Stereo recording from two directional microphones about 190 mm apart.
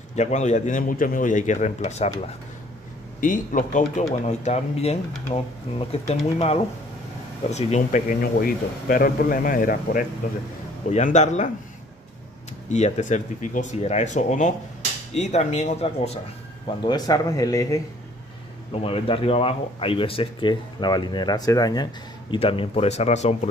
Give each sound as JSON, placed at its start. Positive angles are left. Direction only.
{"t": 0.1, "sound": "speech", "side_deg": 35}
{"t": 12.6, "sound": "speech", "side_deg": 35}
{"t": 16.8, "sound": "speech", "side_deg": 20}
{"t": 18.7, "sound": "speech", "side_deg": 30}